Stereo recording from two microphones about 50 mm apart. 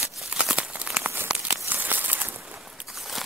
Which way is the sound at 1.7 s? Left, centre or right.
Right.